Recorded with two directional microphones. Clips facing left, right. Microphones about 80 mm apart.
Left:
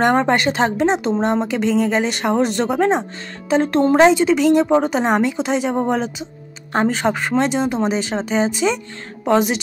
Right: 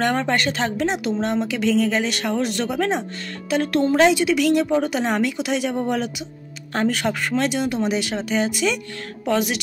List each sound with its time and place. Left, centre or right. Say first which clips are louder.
0.0 s a woman's voice: left 5 dB; left